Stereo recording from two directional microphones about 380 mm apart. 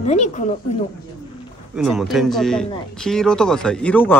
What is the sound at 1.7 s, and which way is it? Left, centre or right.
Speech, centre.